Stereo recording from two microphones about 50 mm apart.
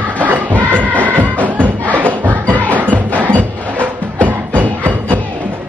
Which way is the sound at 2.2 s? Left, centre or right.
Right.